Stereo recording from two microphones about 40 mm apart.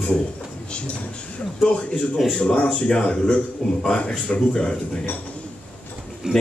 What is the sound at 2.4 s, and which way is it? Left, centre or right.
Speech, left.